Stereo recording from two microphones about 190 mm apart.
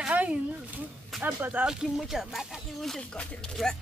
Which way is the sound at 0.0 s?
5° right (ahead or behind).